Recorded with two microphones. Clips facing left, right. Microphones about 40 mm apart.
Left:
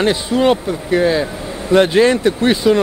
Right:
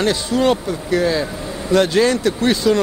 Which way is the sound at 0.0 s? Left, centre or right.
Centre.